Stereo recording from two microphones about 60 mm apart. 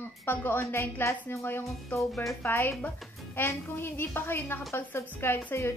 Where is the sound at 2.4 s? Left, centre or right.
Left.